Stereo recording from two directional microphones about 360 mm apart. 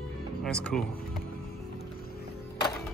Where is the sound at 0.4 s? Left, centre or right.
Centre.